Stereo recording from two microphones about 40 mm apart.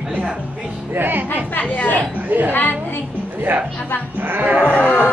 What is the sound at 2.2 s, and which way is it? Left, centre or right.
Speech, right.